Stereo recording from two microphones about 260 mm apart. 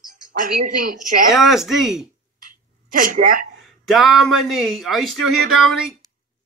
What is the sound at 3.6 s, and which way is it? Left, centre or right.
Speech, centre.